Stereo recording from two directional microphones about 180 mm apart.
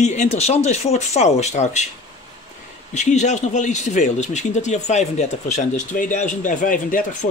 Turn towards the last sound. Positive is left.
turn(degrees=45)  # may be behind; listen again after turning